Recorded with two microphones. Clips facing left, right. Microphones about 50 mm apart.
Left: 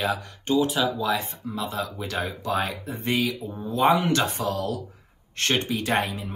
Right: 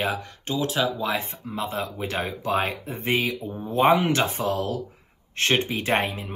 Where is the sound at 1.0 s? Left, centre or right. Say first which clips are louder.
Left 1 dB; right.